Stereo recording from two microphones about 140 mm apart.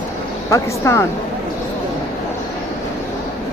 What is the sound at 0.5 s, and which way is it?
Speech, 20° left (ahead or behind).